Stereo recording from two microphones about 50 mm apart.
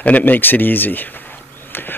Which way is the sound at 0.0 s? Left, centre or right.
Left.